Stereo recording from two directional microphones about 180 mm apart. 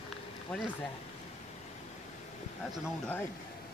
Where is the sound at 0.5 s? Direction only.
5° left (ahead or behind).